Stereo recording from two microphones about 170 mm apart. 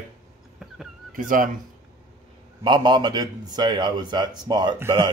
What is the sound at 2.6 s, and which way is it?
A man's voice, 25° right (ahead or behind).